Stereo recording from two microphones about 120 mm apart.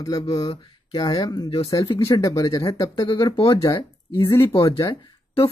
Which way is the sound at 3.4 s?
50° left (ahead or behind).